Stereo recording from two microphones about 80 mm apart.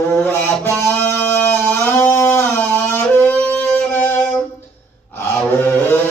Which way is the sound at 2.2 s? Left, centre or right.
Left.